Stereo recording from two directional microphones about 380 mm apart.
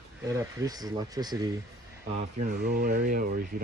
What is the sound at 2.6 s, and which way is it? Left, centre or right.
Speech, right.